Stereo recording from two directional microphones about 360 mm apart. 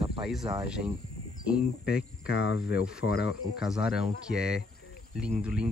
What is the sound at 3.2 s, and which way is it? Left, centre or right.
Speech, centre.